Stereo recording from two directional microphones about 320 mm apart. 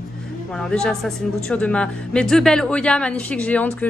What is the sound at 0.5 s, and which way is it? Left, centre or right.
A woman's voice, centre.